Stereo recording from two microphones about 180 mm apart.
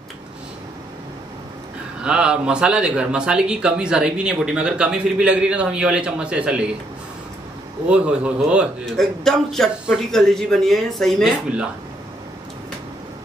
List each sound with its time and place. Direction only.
2.0 s a man's voice: 5° right (ahead or behind)
7.9 s a man's voice: 5° right (ahead or behind)